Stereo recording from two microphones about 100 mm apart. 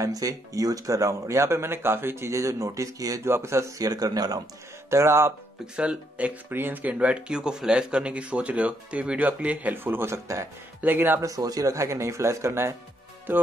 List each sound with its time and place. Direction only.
0.0 s speech: 35° right (ahead or behind)
4.8 s speech: 25° right (ahead or behind)
5.8 s speech: 15° right (ahead or behind)
11.1 s speech: 35° right (ahead or behind); by 13.4 s 20° right (ahead or behind)